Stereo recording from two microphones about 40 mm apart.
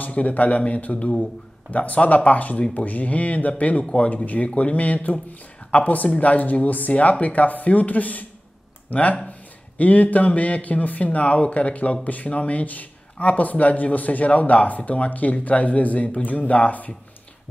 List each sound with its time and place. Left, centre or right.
0.0 s a man's voice: left
4.1 s a man's voice: left